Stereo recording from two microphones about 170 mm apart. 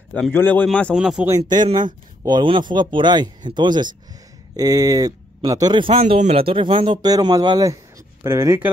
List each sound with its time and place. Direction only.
0.1 s speech: 10° left (ahead or behind)
0.9 s speech: 5° right (ahead or behind)
1.3 s speech: 25° right (ahead or behind)